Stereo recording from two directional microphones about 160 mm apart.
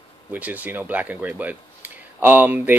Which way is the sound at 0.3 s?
10° right (ahead or behind).